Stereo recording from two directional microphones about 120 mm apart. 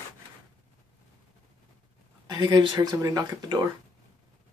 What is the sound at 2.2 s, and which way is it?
Speech, 35° right (ahead or behind).